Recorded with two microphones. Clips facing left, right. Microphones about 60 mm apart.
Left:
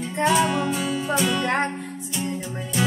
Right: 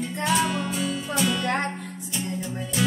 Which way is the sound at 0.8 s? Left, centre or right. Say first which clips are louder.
Left 3 dB; centre.